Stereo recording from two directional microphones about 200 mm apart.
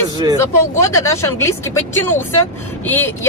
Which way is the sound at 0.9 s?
15° left (ahead or behind).